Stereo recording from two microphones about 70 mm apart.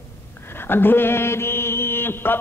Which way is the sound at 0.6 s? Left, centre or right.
Left.